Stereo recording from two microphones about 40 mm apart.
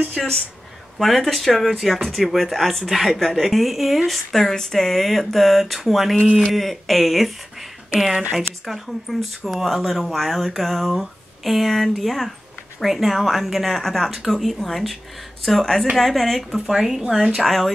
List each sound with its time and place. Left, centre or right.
0.2 s speech: centre
7.9 s speech: centre
8.4 s speech: centre
17.4 s speech: centre